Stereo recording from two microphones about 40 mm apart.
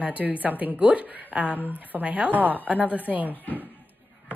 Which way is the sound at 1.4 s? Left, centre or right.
Left.